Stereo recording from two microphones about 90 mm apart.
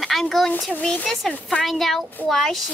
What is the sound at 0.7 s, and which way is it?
Speech, 20° left (ahead or behind).